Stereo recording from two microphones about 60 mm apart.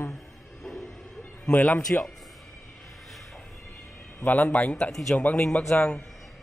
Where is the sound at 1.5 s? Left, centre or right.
Left.